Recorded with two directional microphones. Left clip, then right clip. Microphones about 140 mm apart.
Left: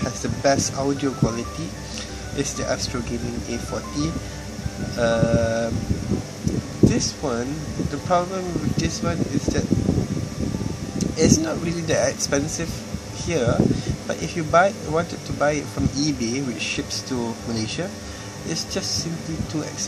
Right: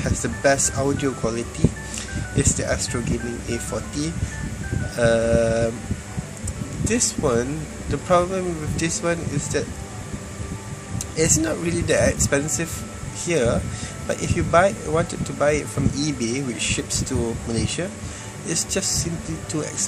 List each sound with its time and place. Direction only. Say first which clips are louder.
0.0 s speech: right 1 dB; 10° right (ahead or behind)
2.3 s speech: right 2 dB; 10° right (ahead or behind)
6.9 s speech: right 3 dB; 25° right (ahead or behind)
11.1 s speech: left 1 dB; 15° right (ahead or behind)
18.5 s speech: right 2 dB; 15° right (ahead or behind)